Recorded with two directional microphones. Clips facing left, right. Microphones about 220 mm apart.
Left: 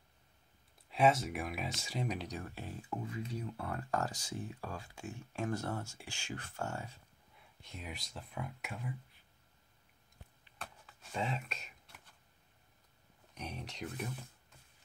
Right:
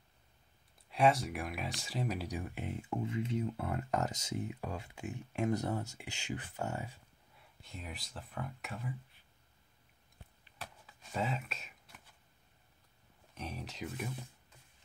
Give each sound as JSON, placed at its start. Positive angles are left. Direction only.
{"t": 0.8, "sound": "speech", "side_deg": 0}
{"t": 7.3, "sound": "speech", "side_deg": 0}
{"t": 10.6, "sound": "a sound", "side_deg": 0}
{"t": 13.3, "sound": "speech", "side_deg": 0}